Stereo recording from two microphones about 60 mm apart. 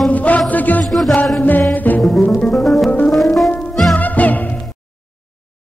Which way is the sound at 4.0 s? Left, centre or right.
Left.